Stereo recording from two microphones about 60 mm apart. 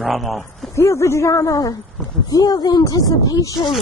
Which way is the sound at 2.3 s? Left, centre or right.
Left.